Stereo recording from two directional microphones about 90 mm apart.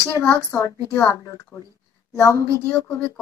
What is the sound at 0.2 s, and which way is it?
Speech, 35° left (ahead or behind).